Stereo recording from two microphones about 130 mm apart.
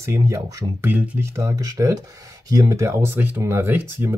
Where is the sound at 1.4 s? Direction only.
25° right (ahead or behind).